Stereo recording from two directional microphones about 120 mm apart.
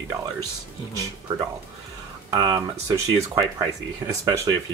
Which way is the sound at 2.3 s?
30° right (ahead or behind).